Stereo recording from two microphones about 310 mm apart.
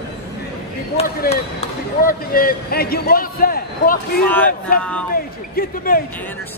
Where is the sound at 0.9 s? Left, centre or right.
Left.